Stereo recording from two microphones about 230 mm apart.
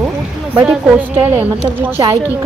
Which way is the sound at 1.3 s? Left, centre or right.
Centre.